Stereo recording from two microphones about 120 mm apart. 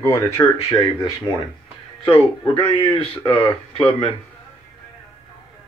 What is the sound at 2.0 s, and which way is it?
Speech, 45° left (ahead or behind).